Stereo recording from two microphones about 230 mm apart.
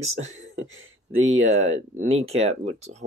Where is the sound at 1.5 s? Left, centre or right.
Right.